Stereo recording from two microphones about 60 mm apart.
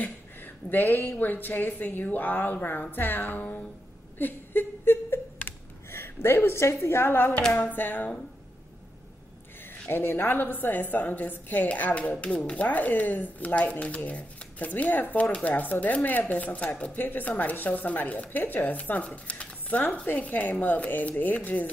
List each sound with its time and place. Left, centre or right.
0.0 s a woman's voice: left
4.2 s a sound: left
7.5 s a woman's voice: left
9.8 s a woman's voice: left